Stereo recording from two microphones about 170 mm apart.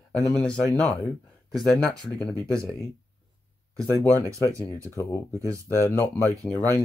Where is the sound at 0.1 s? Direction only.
5° left (ahead or behind).